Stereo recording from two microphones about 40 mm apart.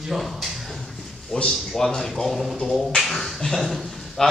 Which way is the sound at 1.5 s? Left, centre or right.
Centre.